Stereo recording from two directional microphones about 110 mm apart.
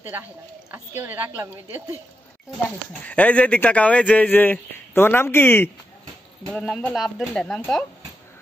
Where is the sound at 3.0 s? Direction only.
10° left (ahead or behind).